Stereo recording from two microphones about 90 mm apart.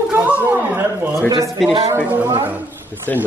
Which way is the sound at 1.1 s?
35° right (ahead or behind).